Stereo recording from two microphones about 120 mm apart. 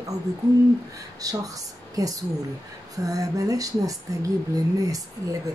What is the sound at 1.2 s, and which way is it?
Speech, 30° right (ahead or behind).